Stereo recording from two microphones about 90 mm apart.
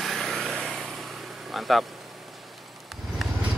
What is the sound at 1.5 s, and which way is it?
Speech, centre (ahead or behind).